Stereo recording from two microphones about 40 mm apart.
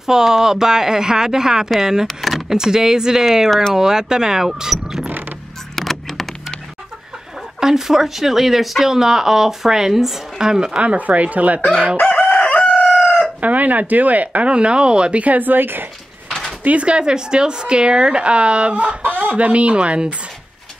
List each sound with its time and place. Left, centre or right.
0.0 s speech: centre
2.0 s speech: centre
2.5 s speech: centre
5.8 s vehicle: centre
7.6 s speech: centre
10.8 s speech: right
12.0 s chicken: left
13.4 s speech: right
14.5 s speech: right
15.2 s a woman's voice: right
16.3 s a sound: centre
16.6 s speech: right
19.0 s chicken: right
19.3 s speech: right